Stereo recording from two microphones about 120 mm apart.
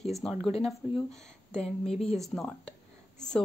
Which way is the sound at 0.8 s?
20° right (ahead or behind).